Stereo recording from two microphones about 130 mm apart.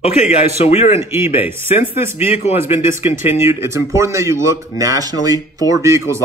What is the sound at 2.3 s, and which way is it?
Speech, 55° left (ahead or behind).